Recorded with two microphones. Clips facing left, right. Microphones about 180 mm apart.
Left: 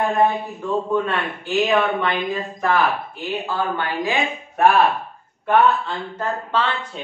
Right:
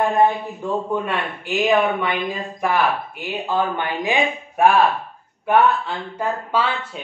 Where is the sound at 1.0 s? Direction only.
10° right (ahead or behind).